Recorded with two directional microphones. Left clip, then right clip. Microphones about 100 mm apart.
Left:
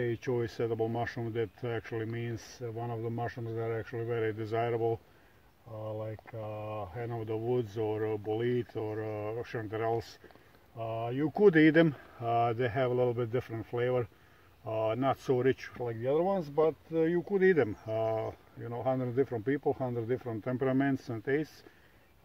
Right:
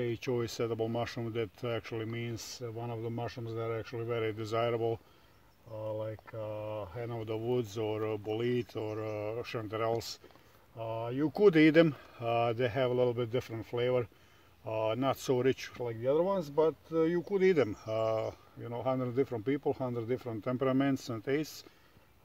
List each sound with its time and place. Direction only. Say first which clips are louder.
0.0 s speech: left 1 dB; 25° right (ahead or behind)
5.9 s speech: right 2 dB; 25° right (ahead or behind)
18.6 s speech: left 1 dB; 30° right (ahead or behind)